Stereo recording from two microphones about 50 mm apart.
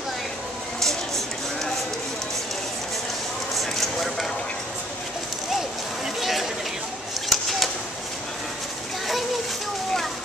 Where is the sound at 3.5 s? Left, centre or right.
Centre.